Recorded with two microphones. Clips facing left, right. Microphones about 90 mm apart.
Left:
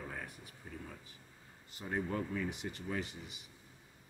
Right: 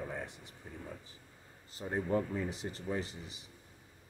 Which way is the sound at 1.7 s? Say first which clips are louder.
Right 4 dB; 35° right (ahead or behind).